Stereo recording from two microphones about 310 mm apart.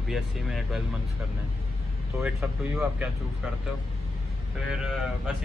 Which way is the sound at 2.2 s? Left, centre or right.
Centre.